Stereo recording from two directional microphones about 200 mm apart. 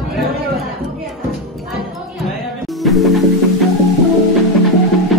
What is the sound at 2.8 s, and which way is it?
Music, centre (ahead or behind).